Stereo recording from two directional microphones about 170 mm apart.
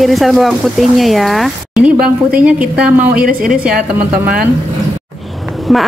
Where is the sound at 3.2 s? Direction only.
55° right (ahead or behind).